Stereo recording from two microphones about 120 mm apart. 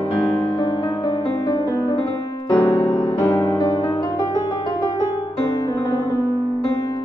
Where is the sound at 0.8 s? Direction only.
30° left (ahead or behind).